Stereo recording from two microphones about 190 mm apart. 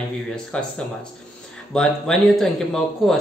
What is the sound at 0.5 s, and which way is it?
A man's voice, 5° left (ahead or behind).